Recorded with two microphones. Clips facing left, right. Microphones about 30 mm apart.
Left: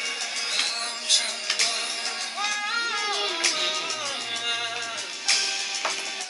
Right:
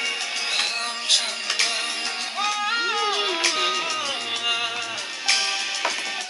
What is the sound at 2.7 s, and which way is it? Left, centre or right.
Music, centre.